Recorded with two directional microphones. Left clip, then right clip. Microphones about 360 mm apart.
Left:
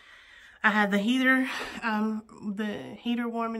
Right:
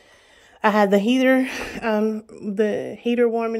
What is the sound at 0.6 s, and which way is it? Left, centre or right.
Speech, centre.